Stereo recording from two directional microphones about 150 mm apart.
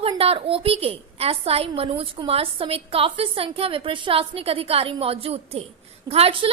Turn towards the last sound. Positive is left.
turn(degrees=-40)  # may be behind; listen again after turning